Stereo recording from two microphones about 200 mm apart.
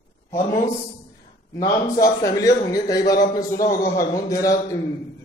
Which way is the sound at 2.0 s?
15° left (ahead or behind).